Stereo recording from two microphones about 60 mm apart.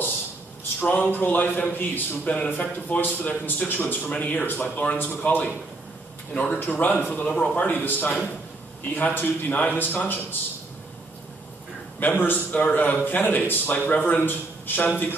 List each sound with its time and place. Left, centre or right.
0.7 s a man's voice: left
12.0 s a man's voice: left